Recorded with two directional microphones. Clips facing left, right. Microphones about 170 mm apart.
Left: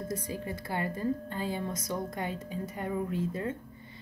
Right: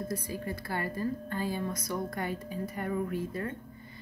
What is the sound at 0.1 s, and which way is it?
Speech, 20° left (ahead or behind).